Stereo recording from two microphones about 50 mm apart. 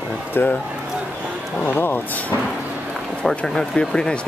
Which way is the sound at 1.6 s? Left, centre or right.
Left.